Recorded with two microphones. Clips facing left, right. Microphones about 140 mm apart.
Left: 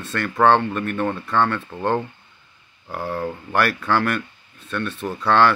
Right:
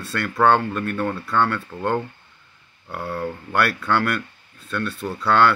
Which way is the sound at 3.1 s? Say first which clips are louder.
Even; 25° left (ahead or behind).